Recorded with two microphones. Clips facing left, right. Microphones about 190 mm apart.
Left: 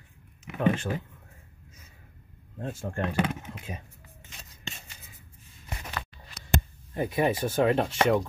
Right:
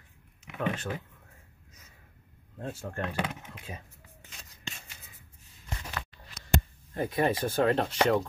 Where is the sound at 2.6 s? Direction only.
25° left (ahead or behind).